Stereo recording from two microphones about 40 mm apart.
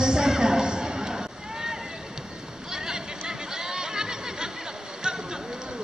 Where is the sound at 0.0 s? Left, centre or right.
Centre.